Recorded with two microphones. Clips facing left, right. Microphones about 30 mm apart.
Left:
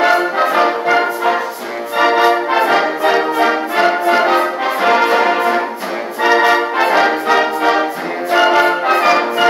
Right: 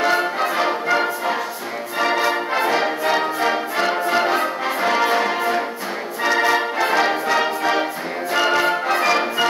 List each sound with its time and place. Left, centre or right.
0.1 s music: left
7.3 s music: left